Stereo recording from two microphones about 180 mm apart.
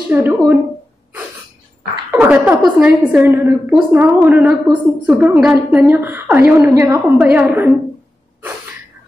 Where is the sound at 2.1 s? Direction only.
10° right (ahead or behind).